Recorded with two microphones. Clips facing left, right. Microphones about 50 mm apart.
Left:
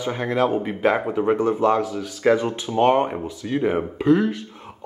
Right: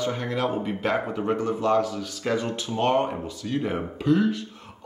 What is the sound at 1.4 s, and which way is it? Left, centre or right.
Speech, left.